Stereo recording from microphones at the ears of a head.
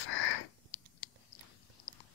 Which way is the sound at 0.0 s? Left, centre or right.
Left.